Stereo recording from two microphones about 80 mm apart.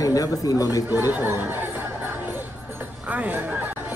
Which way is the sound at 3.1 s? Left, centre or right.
Right.